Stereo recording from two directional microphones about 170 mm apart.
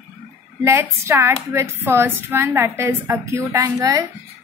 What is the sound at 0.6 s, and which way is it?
A woman's voice, 15° right (ahead or behind).